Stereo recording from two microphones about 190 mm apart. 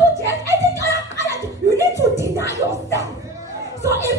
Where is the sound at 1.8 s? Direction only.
15° right (ahead or behind).